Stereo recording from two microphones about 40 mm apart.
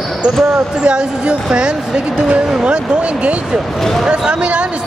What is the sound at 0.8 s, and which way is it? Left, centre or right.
Speech, right.